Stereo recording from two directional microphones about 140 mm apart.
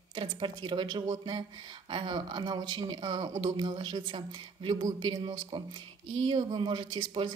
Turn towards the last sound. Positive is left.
turn(degrees=-35)  # may be behind; listen again after turning